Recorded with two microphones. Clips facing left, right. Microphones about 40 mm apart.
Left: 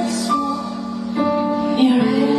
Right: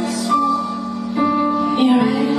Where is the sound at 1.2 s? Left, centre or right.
Right.